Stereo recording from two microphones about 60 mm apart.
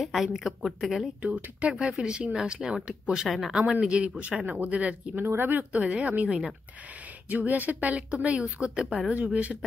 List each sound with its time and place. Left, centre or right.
0.0 s a woman's voice: centre
1.2 s speech: right
3.3 s a woman's voice: centre
3.8 s a woman's voice: centre
5.2 s a woman's voice: right